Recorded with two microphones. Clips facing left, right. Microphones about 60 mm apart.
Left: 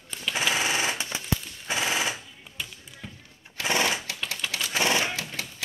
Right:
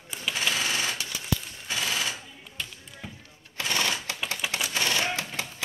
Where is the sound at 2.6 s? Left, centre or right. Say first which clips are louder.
Even; centre.